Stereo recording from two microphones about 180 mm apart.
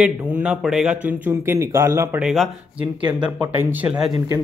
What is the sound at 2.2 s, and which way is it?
Speech, centre (ahead or behind).